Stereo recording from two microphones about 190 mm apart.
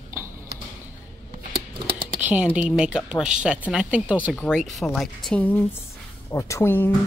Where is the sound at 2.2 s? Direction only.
5° right (ahead or behind).